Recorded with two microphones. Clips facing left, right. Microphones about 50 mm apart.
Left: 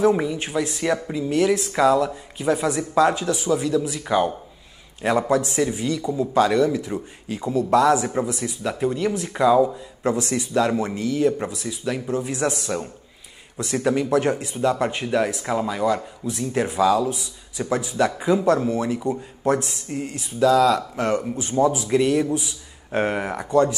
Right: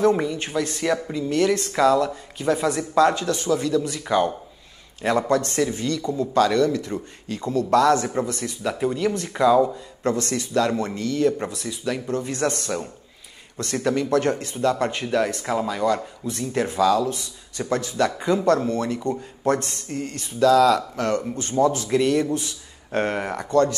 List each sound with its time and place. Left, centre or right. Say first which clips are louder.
0.0 s speech: left 1 dB; centre
20.9 s speech: left 1 dB; centre